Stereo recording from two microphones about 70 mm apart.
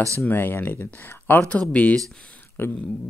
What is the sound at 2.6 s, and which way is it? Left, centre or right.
Speech, left.